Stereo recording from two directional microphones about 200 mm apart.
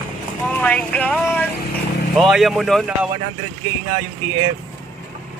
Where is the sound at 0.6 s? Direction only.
5° left (ahead or behind).